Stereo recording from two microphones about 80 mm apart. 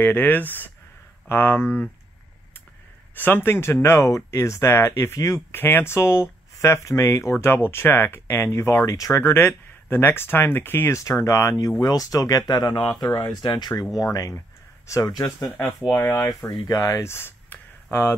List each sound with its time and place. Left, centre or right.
0.0 s speech: left
3.2 s speech: left
5.5 s speech: left
9.2 s speech: left
11.0 s speech: left
11.8 s speech: left
13.9 s speech: left
15.9 s speech: left